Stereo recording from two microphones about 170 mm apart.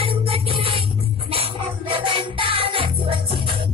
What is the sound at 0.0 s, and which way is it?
Music, 30° right (ahead or behind).